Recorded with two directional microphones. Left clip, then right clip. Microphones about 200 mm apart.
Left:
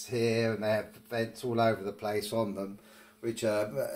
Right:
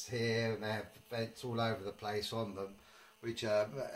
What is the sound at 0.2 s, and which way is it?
Speech, 20° left (ahead or behind).